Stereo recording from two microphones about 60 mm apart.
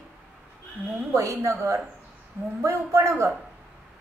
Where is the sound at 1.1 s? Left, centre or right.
Right.